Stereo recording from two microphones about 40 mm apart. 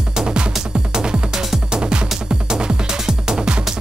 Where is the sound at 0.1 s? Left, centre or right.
Centre.